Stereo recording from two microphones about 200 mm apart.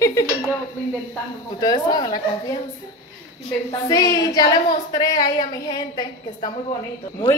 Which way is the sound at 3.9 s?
20° left (ahead or behind).